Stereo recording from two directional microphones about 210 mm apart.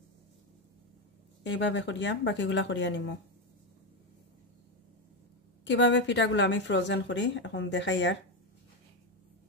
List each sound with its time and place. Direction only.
1.4 s a woman's voice: 60° left (ahead or behind)
5.7 s a woman's voice: 55° left (ahead or behind)